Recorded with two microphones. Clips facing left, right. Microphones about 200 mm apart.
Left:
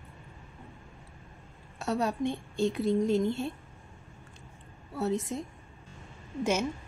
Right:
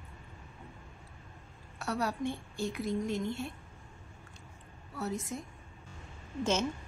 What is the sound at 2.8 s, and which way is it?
Speech, centre (ahead or behind).